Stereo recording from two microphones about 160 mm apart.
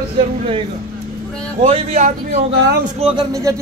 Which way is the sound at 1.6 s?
40° right (ahead or behind).